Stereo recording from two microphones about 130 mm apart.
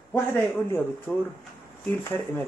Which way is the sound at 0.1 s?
15° left (ahead or behind).